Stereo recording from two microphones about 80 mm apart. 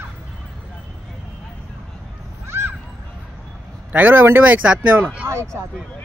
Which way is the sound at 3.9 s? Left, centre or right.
Right.